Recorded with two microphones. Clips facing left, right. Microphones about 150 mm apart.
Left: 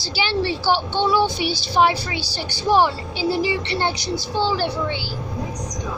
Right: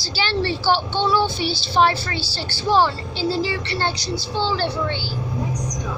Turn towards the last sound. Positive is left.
turn(degrees=10)  # may be behind; listen again after turning